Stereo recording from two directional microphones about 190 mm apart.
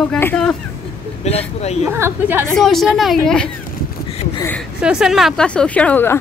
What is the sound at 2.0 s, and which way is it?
Speech, 10° right (ahead or behind).